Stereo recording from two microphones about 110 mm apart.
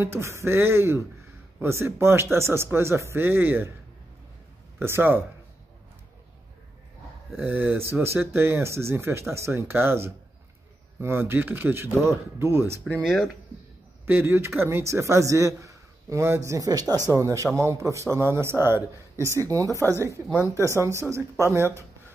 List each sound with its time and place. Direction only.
0.0 s a man's voice: 25° right (ahead or behind)
4.7 s a man's voice: 20° right (ahead or behind)
7.3 s a man's voice: 15° right (ahead or behind)
14.0 s a man's voice: 20° right (ahead or behind)